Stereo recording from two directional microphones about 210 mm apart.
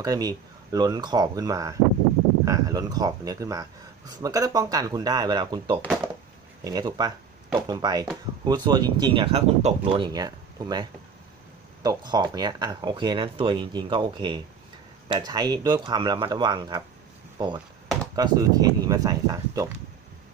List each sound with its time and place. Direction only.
0.0 s speech: 15° right (ahead or behind)